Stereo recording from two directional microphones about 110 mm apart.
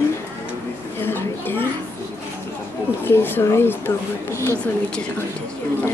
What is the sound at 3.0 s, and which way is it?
Speech, 20° left (ahead or behind).